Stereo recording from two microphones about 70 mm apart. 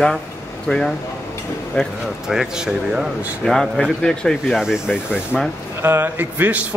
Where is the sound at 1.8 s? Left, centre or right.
Left.